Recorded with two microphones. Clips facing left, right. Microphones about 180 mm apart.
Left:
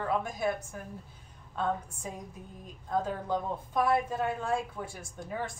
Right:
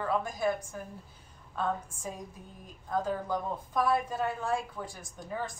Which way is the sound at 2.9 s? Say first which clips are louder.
Even; 20° left (ahead or behind).